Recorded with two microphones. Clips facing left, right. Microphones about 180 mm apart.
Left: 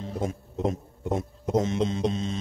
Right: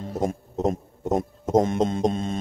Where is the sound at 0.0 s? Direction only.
45° right (ahead or behind).